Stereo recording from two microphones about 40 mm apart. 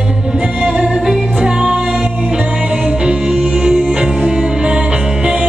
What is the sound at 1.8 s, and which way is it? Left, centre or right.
Music, centre.